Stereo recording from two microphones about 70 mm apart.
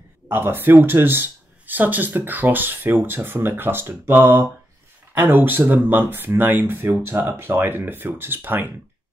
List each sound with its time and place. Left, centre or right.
0.3 s speech: right